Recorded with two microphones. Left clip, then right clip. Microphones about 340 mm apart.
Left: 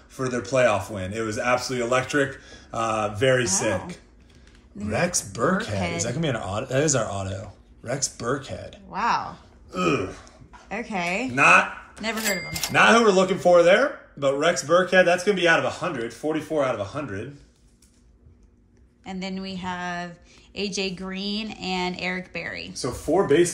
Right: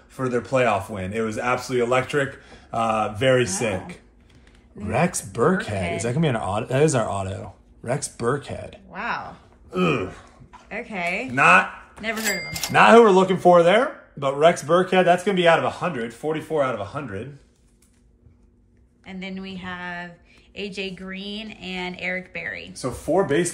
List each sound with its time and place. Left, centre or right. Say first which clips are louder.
0.1 s speech: right 2 dB; right
8.9 s speech: left 5 dB; centre
9.7 s speech: right 1 dB; right
10.7 s speech: even; centre
11.3 s speech: right 1 dB; right
12.0 s speech: right 1 dB; centre
12.7 s speech: right 4 dB; right
19.0 s speech: left 2 dB; centre
22.7 s speech: even; right